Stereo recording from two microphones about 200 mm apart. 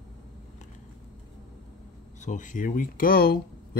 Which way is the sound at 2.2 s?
40° left (ahead or behind).